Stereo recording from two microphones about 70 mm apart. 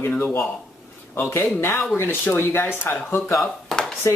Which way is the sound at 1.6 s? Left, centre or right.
Left.